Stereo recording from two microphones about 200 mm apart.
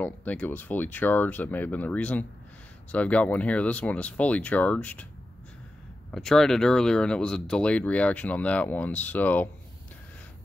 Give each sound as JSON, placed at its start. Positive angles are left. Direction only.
{"t": 0.0, "sound": "speech", "side_deg": 10}
{"t": 6.1, "sound": "speech", "side_deg": 0}